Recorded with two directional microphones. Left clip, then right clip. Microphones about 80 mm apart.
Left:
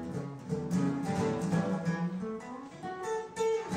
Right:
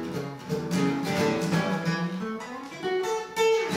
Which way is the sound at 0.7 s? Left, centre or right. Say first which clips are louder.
Right 7 dB; right.